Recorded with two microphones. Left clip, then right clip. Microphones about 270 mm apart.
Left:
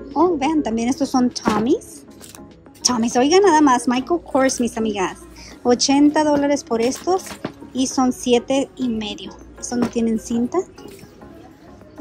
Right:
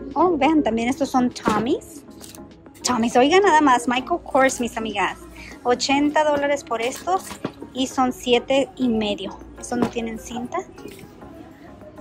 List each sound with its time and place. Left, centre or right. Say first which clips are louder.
0.1 s a woman's voice: even; centre
2.8 s a woman's voice: even; centre
9.9 s a woman's voice: left 7 dB; centre